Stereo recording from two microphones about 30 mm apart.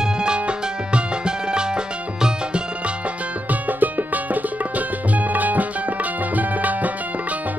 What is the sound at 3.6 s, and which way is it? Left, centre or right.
Music, right.